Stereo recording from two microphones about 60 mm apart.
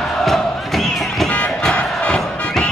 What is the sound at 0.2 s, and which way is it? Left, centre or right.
Crowd, centre.